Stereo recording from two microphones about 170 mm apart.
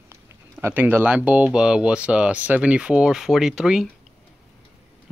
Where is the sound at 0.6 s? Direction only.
15° right (ahead or behind).